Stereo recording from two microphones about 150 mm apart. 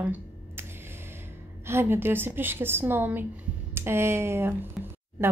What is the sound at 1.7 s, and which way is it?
A woman's voice, 15° right (ahead or behind).